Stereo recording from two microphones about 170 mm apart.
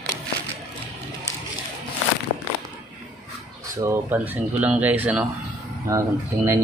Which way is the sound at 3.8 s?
15° right (ahead or behind).